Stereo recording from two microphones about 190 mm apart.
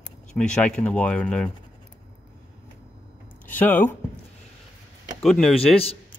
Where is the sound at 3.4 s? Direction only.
10° left (ahead or behind).